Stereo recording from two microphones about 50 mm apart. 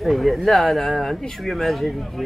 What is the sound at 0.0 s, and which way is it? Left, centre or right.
Speech, centre.